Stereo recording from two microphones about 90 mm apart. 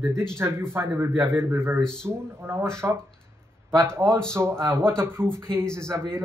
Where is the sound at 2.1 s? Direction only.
30° right (ahead or behind).